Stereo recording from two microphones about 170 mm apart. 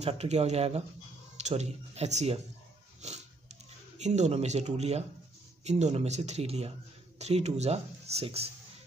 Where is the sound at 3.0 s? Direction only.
40° right (ahead or behind).